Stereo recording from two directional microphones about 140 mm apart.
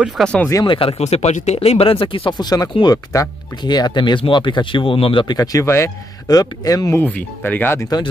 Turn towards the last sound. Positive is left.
turn(degrees=15)  # may be behind; listen again after turning